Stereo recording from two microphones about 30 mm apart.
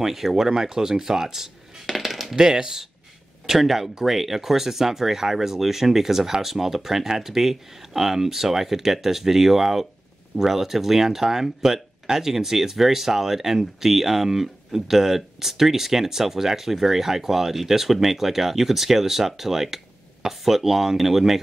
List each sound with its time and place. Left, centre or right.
0.0 s speech: centre
2.0 s coin: centre
2.3 s speech: right